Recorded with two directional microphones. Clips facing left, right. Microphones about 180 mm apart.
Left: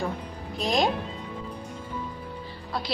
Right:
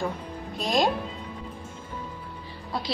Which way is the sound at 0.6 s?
Centre (ahead or behind).